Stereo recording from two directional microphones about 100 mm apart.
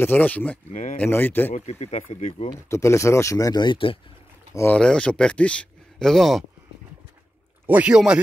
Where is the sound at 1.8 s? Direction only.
90° left.